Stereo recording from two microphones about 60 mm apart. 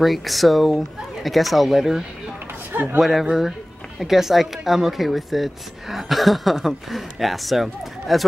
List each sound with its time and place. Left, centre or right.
0.0 s a woman's voice: centre
2.7 s speech: right
3.0 s a woman's voice: centre